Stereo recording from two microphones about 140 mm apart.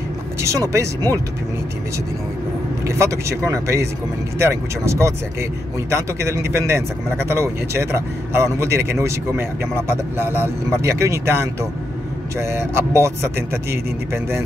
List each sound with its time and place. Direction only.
0.4 s speech: 20° right (ahead or behind)
2.9 s a man's voice: 20° right (ahead or behind)